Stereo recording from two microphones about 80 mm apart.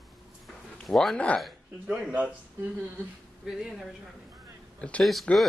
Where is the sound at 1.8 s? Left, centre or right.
Centre.